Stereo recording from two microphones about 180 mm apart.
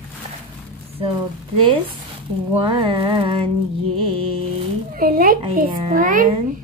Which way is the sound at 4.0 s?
30° right (ahead or behind).